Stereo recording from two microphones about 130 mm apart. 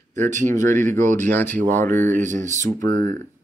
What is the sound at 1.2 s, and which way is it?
Speech, 15° left (ahead or behind).